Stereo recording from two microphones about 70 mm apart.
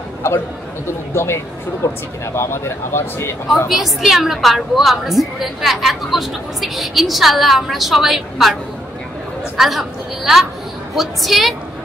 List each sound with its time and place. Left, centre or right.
0.8 s speech: left
3.6 s a woman's voice: centre
9.6 s a woman's voice: centre